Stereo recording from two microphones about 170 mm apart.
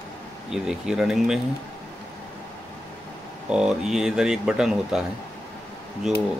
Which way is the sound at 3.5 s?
5° right (ahead or behind).